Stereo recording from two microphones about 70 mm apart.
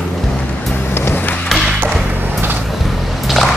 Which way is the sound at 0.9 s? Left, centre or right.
Left.